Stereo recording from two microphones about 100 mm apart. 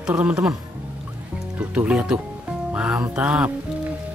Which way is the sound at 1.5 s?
15° right (ahead or behind).